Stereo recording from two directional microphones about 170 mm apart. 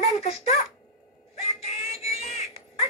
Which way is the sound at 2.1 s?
40° left (ahead or behind).